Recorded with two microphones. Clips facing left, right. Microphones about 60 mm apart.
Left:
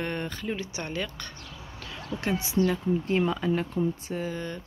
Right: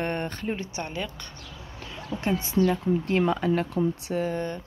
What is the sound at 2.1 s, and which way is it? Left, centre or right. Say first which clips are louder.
Speech: right 2 dB; right.